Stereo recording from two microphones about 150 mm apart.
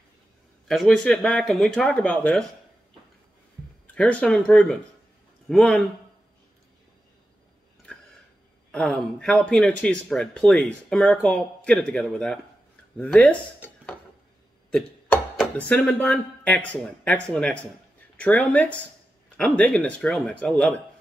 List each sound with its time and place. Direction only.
0.7 s speech: 5° left (ahead or behind)
3.8 s speech: 10° left (ahead or behind)
8.7 s speech: 5° left (ahead or behind)